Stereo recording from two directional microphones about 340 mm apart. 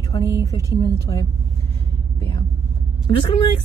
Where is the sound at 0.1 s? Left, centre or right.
Centre.